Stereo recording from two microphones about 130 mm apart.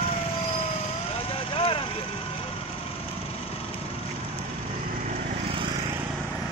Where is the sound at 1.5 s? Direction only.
45° left (ahead or behind).